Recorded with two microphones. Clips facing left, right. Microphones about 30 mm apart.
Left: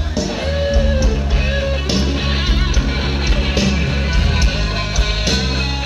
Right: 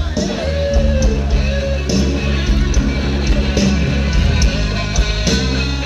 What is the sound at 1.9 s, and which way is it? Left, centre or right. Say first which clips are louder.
Music: right 4 dB; left.